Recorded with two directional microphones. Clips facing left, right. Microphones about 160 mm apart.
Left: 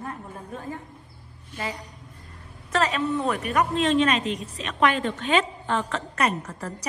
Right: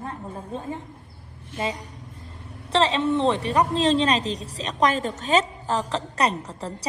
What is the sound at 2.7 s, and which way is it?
A woman's voice, 30° right (ahead or behind).